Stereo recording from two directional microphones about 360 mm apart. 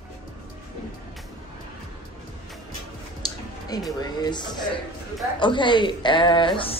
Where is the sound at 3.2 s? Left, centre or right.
Centre.